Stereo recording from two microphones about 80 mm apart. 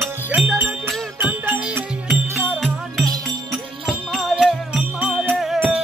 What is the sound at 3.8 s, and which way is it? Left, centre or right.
Music, centre.